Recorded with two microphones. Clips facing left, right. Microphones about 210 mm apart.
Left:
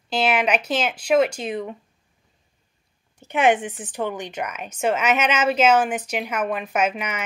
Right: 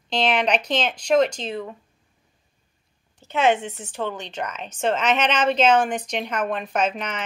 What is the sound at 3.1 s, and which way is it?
Speech, 15° left (ahead or behind).